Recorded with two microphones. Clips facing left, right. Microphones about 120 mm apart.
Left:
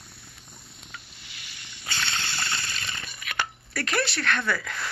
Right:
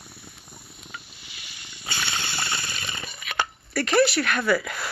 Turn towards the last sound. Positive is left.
turn(degrees=-10)  # may be behind; listen again after turning